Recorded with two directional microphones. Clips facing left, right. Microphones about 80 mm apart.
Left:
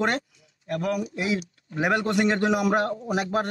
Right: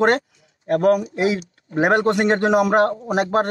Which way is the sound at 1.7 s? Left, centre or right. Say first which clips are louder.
Right 6 dB; right.